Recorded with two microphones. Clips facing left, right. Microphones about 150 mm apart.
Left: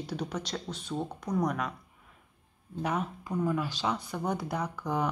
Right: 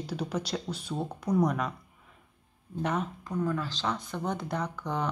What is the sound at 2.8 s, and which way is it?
Speech, 5° left (ahead or behind).